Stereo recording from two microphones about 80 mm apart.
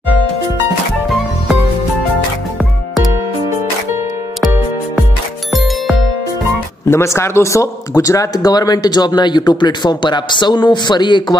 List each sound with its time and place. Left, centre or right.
6.9 s speech: left